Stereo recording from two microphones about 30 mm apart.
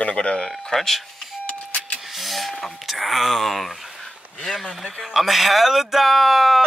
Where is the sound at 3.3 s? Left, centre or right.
Centre.